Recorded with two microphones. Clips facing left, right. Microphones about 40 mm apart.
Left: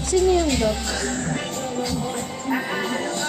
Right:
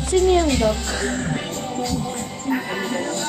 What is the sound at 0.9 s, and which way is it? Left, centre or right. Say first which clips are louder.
Speech: right 2 dB; right.